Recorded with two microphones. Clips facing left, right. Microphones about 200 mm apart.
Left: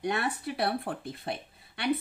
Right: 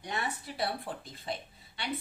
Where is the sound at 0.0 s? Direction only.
65° left (ahead or behind).